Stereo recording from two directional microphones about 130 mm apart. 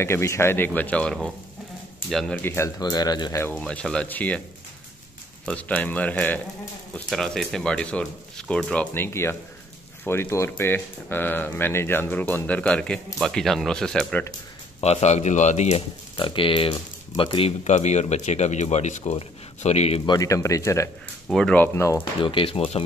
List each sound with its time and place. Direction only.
0.0 s speech: 20° left (ahead or behind); by 2.4 s 5° left (ahead or behind)
2.4 s speech: 20° left (ahead or behind)
2.8 s speech: 30° left (ahead or behind)
3.5 s speech: 5° left (ahead or behind)
5.4 s speech: 10° left (ahead or behind)
8.9 s speech: 20° left (ahead or behind)
14.8 s speech: 55° left (ahead or behind)
16.2 s speech: 40° left (ahead or behind)
17.5 s speech: 60° left (ahead or behind)
20.1 s speech: 25° left (ahead or behind)
21.3 s speech: 5° left (ahead or behind)
21.7 s speech: 20° left (ahead or behind)
22.2 s speech: 40° left (ahead or behind)